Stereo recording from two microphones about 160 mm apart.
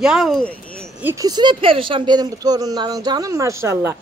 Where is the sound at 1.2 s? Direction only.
30° right (ahead or behind).